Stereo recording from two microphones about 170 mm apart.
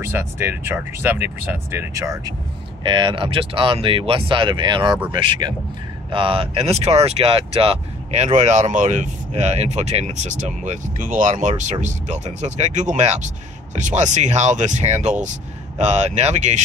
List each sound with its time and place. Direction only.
0.0 s speech: 15° right (ahead or behind)
2.8 s speech: 30° right (ahead or behind)